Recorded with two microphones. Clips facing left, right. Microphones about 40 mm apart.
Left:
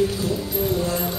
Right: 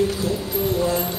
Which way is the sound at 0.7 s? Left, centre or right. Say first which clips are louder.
Right 3 dB; centre.